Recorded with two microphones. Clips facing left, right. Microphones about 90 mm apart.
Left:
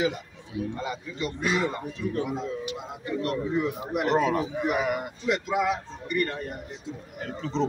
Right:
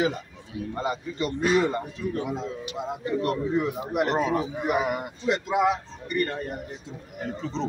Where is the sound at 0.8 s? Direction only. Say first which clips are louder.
Right 4 dB; 40° right (ahead or behind).